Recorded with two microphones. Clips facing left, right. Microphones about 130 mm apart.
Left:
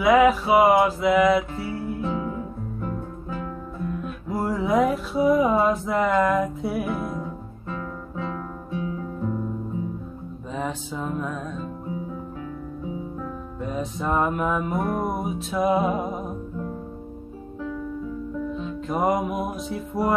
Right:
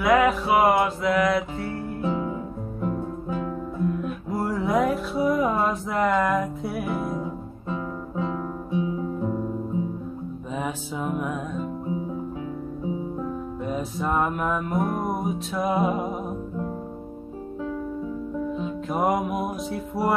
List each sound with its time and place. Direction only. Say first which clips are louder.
0.0 s music: left 3 dB; centre (ahead or behind)
2.3 s music: even; 15° right (ahead or behind)
4.0 s music: even; centre (ahead or behind)
7.2 s guitar: right 2 dB; 20° right (ahead or behind)
10.5 s music: left 1 dB; 10° right (ahead or behind)
13.7 s music: left 1 dB; 5° right (ahead or behind)
18.6 s music: left 1 dB; 5° right (ahead or behind)